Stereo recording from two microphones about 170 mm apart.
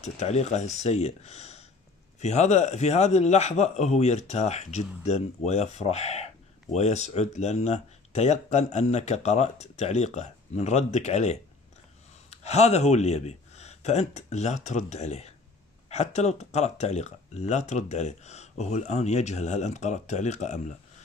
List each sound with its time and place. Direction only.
0.0 s speech: 40° left (ahead or behind)